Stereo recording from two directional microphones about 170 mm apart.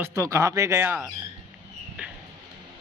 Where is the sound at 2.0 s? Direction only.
10° right (ahead or behind).